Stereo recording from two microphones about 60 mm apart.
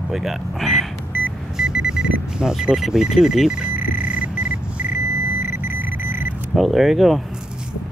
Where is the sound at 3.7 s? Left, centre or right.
Centre.